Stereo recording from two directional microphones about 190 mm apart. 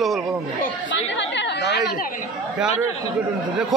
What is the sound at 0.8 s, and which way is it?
Chatter, 70° left (ahead or behind).